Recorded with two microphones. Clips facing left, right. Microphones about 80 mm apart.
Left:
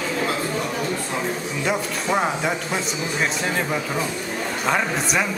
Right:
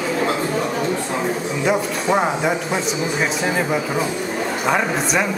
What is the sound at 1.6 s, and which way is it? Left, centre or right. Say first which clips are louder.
Speech: right 5 dB; centre.